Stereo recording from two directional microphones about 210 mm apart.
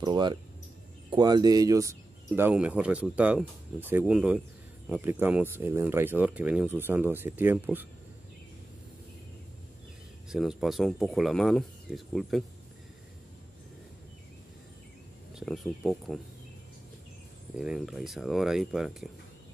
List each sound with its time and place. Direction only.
0.0 s speech: 20° right (ahead or behind)
10.3 s speech: centre (ahead or behind)
15.3 s speech: centre (ahead or behind)
17.6 s speech: centre (ahead or behind)